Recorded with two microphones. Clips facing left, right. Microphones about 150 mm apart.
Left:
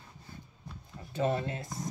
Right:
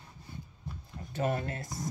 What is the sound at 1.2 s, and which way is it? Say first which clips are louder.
Speech: left 1 dB; 25° left (ahead or behind).